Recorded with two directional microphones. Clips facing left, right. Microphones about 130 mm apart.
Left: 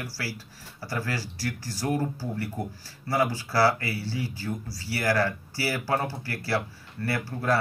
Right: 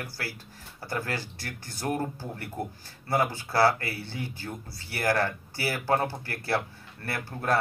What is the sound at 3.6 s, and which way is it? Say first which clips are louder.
Speech: even; 55° right (ahead or behind).